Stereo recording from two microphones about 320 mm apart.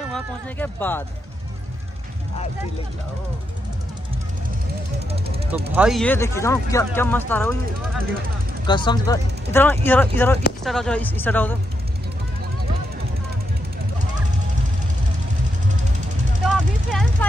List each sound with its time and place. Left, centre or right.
0.1 s speech: centre
5.1 s speech: centre
5.8 s speech: centre
8.6 s speech: centre
16.4 s vehicle: centre